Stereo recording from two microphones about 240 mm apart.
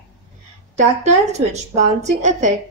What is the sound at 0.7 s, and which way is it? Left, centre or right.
Speech, right.